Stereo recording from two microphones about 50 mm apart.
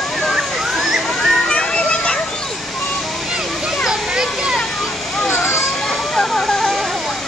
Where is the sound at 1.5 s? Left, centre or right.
Left.